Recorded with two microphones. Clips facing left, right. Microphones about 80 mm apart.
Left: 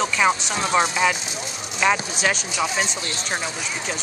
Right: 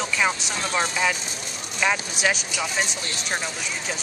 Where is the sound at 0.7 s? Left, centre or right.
Centre.